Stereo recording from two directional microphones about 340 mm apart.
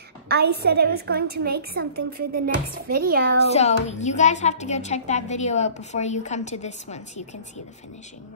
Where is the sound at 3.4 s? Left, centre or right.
Centre.